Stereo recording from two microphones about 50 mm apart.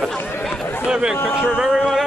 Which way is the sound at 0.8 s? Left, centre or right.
Centre.